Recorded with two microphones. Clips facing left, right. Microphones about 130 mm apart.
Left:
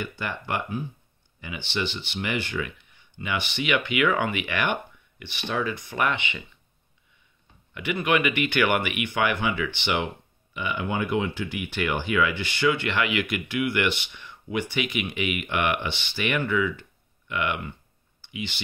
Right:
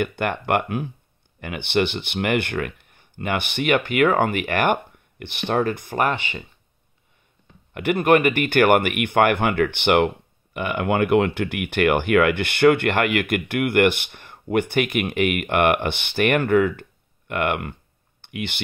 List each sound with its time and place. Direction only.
0.0 s speech: 60° right (ahead or behind); by 6.4 s 40° right (ahead or behind)
7.7 s speech: 50° right (ahead or behind)